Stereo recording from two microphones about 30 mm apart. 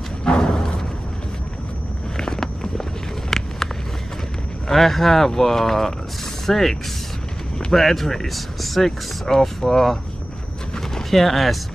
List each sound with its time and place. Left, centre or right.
0.2 s a sound: left
2.1 s vehicle: centre
4.6 s speech: centre
11.1 s speech: centre